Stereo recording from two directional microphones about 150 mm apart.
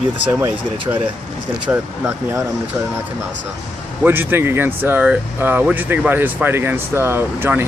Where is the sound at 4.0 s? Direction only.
15° right (ahead or behind).